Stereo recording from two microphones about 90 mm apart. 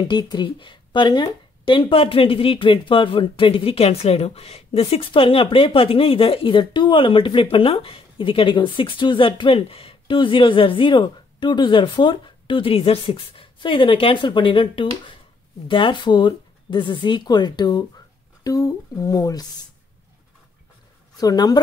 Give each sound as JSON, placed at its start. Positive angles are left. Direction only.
{"t": 0.1, "sound": "speech", "side_deg": 55}
{"t": 7.5, "sound": "a woman's voice", "side_deg": 90}
{"t": 21.2, "sound": "a woman's voice", "side_deg": 45}